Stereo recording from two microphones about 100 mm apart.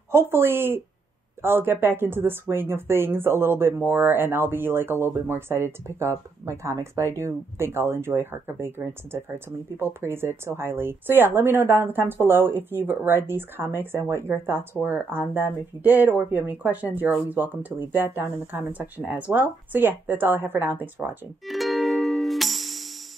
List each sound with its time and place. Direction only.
0.1 s a woman's voice: 25° right (ahead or behind)
21.5 s music: centre (ahead or behind)